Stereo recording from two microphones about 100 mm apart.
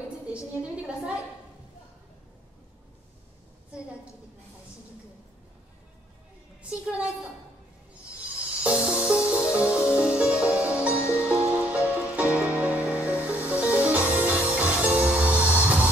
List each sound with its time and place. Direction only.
0.3 s a woman's voice: 10° right (ahead or behind)
6.7 s a woman's voice: 10° right (ahead or behind)
8.2 s music: 10° right (ahead or behind)
10.9 s music: 25° left (ahead or behind)
11.1 s music: 10° right (ahead or behind)